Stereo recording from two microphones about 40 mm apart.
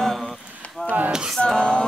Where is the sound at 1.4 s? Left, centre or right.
Left.